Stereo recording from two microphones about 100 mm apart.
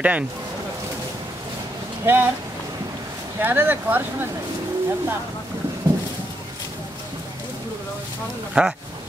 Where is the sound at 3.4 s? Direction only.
20° right (ahead or behind).